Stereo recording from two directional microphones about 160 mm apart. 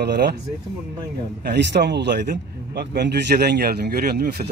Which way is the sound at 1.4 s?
90° right.